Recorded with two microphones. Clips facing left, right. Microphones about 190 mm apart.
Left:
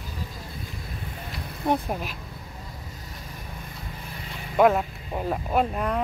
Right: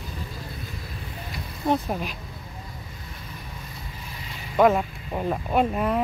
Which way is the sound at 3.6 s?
55° left (ahead or behind).